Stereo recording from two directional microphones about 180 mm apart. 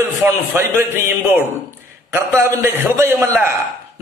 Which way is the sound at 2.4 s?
15° right (ahead or behind).